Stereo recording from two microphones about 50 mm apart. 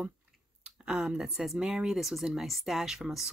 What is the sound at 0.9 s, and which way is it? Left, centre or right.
Speech, centre.